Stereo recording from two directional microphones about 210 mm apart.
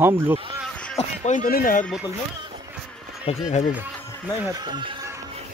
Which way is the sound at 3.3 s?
30° left (ahead or behind).